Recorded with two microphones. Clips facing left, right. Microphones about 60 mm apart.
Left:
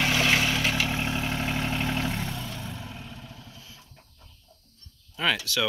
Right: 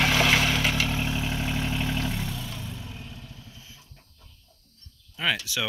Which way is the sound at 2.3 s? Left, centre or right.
Centre.